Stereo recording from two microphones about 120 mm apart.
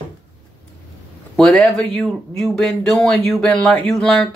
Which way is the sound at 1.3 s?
5° left (ahead or behind).